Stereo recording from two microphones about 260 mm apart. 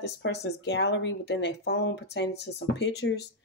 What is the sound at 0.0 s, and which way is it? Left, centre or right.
Speech, left.